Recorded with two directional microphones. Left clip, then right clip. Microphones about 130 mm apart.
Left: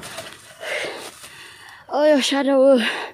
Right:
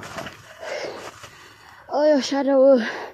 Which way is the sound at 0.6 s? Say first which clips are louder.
Left 4 dB; 35° left (ahead or behind).